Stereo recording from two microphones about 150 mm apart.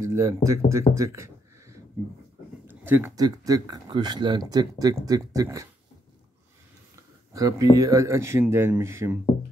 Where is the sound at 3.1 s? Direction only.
25° right (ahead or behind).